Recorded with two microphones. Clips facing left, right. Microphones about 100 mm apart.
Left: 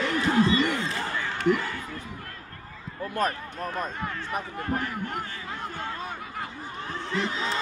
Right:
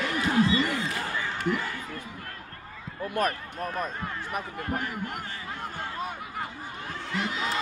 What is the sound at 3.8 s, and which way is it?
Speech, 30° left (ahead or behind).